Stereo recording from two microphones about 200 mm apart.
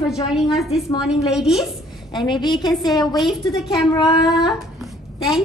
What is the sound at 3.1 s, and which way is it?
Speech, centre (ahead or behind).